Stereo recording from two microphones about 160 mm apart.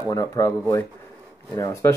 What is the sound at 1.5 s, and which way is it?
Speech, 20° left (ahead or behind).